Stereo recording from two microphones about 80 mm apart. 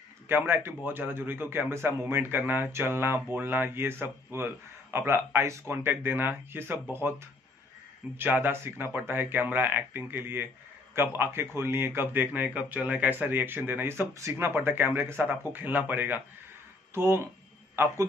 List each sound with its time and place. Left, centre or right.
0.3 s a man's voice: right
14.1 s speech: right
14.5 s a man's voice: right